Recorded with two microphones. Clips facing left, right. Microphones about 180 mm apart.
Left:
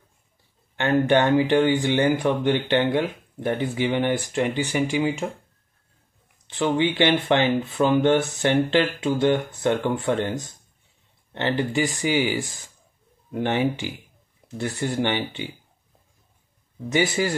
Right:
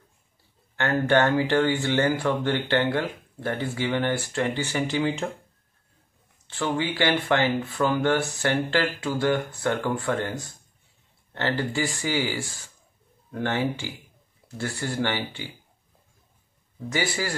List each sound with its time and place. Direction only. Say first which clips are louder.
0.7 s speech: left 2 dB; 15° left (ahead or behind)
6.4 s speech: left 5 dB; 20° left (ahead or behind)
16.9 s speech: left 6 dB; 20° left (ahead or behind)